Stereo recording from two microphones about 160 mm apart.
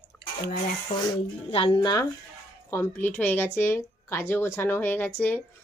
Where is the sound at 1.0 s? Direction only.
30° left (ahead or behind).